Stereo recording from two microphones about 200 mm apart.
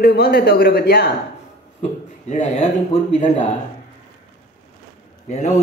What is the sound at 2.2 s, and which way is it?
A man's voice, 35° left (ahead or behind).